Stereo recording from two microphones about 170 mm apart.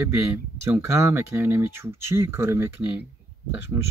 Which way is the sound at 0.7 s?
10° right (ahead or behind).